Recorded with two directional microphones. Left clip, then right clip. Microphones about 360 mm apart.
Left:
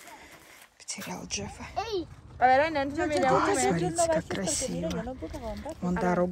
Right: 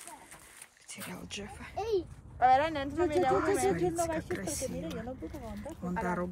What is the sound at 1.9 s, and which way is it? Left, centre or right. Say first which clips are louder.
Speech: left 2 dB; left.